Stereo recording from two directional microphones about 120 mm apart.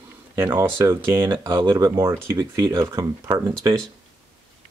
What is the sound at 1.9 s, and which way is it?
Speech, 20° right (ahead or behind).